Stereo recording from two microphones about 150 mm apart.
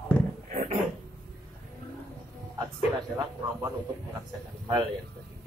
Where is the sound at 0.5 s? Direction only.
60° right (ahead or behind).